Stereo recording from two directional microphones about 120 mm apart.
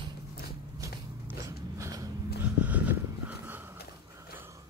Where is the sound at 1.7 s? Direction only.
25° right (ahead or behind).